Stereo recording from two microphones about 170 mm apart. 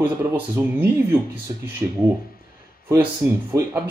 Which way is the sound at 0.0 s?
10° right (ahead or behind).